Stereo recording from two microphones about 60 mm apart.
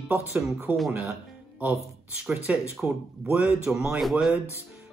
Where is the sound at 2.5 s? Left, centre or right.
Right.